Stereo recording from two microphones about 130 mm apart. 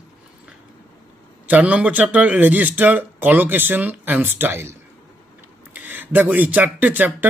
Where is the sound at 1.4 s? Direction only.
10° right (ahead or behind).